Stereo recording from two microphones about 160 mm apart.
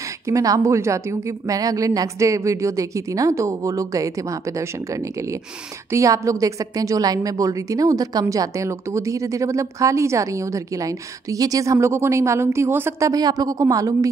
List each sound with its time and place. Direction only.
0.3 s a woman's voice: 20° right (ahead or behind)